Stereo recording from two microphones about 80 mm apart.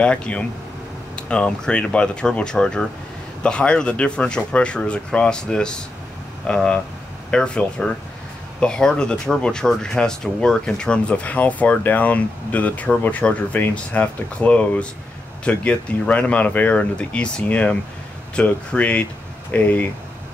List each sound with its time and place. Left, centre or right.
0.0 s speech: centre